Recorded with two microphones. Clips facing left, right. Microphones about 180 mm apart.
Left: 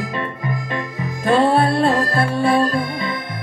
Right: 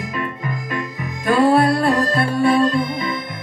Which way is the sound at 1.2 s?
25° left (ahead or behind).